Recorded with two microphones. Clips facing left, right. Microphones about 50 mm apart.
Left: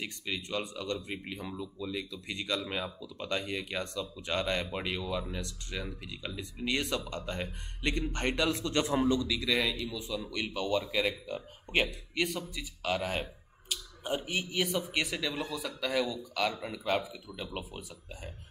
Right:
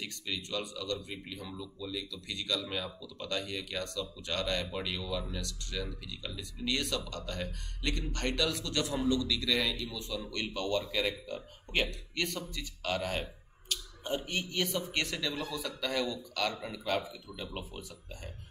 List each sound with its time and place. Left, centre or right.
0.0 s speech: left